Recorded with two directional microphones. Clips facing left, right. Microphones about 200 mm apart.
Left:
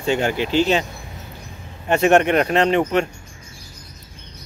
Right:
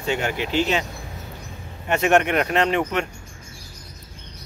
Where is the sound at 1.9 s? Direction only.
30° left (ahead or behind).